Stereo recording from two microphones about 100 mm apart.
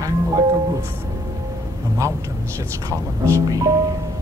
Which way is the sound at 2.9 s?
30° right (ahead or behind).